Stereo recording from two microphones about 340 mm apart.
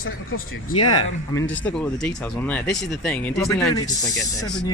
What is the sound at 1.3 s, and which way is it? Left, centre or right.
A man's voice, centre.